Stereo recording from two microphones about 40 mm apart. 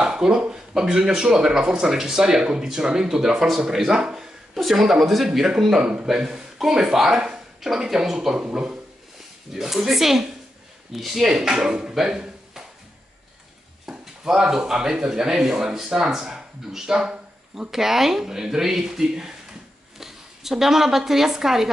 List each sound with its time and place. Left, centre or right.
0.1 s a sound: centre
0.4 s speech: centre
8.5 s speech: right
9.5 s speech: centre
13.8 s a sound: centre
14.6 s speech: centre
17.6 s a woman's voice: centre